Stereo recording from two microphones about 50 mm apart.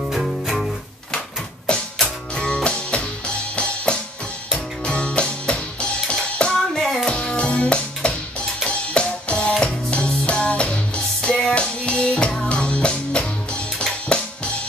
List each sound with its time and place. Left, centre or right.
0.0 s music: centre
1.7 s music: centre
6.7 s music: centre
7.1 s music: left